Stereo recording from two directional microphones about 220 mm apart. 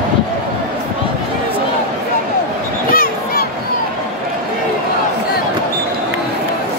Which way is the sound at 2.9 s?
40° left (ahead or behind).